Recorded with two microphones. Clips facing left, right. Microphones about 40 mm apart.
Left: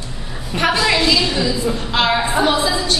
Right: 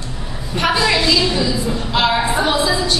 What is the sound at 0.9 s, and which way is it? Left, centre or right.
Speech, centre.